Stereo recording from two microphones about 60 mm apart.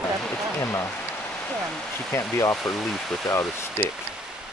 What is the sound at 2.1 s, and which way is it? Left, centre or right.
Speech, left.